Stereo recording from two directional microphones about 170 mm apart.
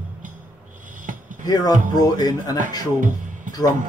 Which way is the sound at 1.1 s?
50° right (ahead or behind).